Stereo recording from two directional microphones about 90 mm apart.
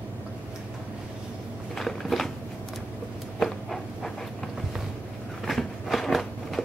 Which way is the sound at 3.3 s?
5° left (ahead or behind).